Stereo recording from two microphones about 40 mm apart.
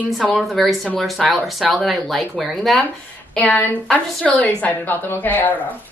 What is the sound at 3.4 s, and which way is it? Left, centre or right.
Speech, left.